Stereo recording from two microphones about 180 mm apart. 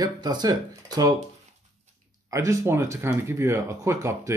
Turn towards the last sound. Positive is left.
turn(degrees=-15)  # may be behind; listen again after turning